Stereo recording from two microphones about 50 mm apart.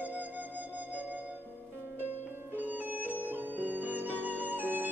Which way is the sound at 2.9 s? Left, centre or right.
Right.